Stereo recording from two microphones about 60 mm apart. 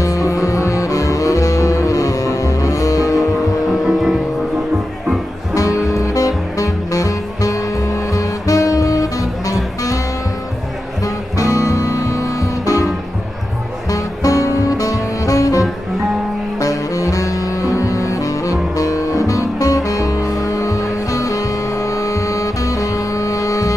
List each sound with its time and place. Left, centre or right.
0.0 s music: left
3.6 s vehicle: centre
5.5 s music: left
11.3 s music: left
13.8 s music: left